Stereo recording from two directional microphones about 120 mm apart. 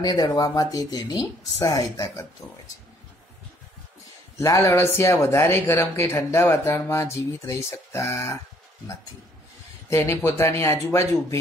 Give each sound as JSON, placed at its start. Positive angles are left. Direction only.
{"t": 0.0, "sound": "speech", "side_deg": 30}
{"t": 4.4, "sound": "speech", "side_deg": 25}
{"t": 9.8, "sound": "speech", "side_deg": 25}